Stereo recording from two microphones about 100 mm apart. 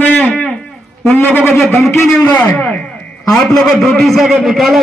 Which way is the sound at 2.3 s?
15° left (ahead or behind).